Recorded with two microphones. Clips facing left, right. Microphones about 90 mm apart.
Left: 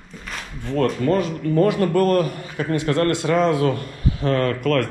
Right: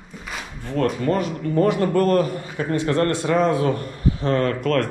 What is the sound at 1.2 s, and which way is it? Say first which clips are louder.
A man's voice: left 1 dB; 20° right (ahead or behind).